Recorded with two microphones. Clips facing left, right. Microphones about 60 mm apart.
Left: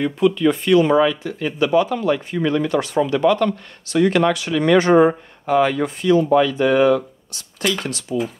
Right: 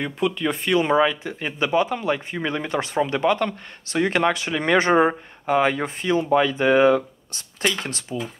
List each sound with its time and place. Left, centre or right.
0.0 s speech: centre